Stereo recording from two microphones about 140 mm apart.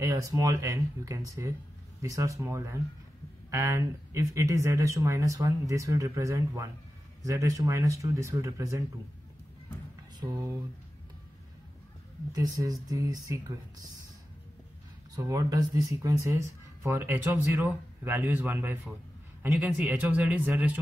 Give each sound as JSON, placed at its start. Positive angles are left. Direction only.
{"t": 0.0, "sound": "speech", "side_deg": -25}
{"t": 10.2, "sound": "speech", "side_deg": -20}
{"t": 12.3, "sound": "speech", "side_deg": -25}
{"t": 15.1, "sound": "a man's voice", "side_deg": -25}